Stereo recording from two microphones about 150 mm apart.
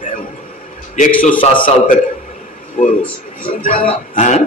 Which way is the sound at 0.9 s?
60° left (ahead or behind).